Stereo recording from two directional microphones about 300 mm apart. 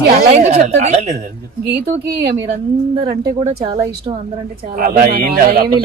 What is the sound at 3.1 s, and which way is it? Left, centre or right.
Speech, centre.